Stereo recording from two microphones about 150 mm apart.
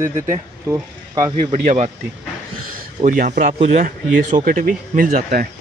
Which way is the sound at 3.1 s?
65° right (ahead or behind).